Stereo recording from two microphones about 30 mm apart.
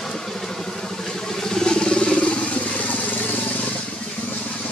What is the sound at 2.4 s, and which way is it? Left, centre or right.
Vehicle, left.